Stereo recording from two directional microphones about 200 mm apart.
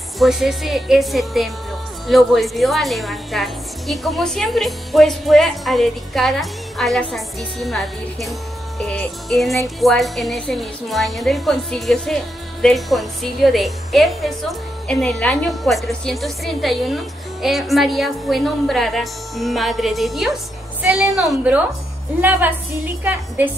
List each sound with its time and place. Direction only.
0.2 s a woman's voice: centre (ahead or behind)
23.0 s a woman's voice: 10° right (ahead or behind)